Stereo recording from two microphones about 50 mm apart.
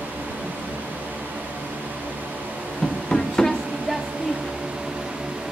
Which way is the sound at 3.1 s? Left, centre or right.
Centre.